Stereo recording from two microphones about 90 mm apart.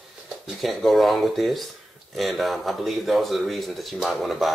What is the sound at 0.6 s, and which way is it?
Speech, centre (ahead or behind).